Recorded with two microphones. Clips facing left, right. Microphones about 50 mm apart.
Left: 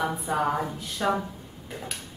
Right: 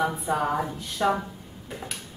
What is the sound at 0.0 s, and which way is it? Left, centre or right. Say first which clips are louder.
Speech: right 1 dB; centre.